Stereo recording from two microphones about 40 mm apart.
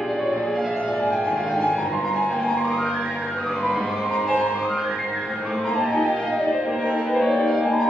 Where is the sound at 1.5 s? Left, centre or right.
Left.